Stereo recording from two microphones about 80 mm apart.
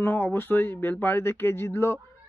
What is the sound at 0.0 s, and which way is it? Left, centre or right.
A man's voice, left.